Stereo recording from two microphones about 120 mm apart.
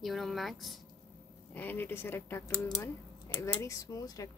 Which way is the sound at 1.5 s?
15° left (ahead or behind).